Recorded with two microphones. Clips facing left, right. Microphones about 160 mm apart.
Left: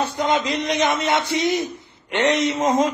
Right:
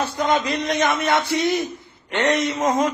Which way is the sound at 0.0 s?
20° left (ahead or behind).